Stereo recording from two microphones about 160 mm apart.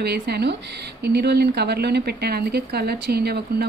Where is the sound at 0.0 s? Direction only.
90° right.